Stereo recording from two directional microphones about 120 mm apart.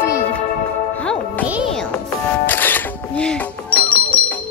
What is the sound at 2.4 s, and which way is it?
Music, 15° left (ahead or behind).